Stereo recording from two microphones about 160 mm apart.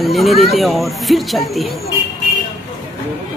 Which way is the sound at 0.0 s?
Centre (ahead or behind).